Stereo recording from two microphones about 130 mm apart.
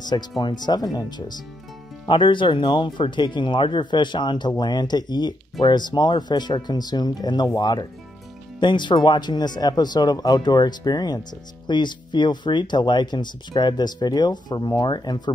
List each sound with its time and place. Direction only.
0.4 s speech: 35° left (ahead or behind)